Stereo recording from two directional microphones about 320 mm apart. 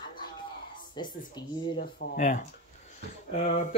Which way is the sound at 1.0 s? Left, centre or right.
Centre.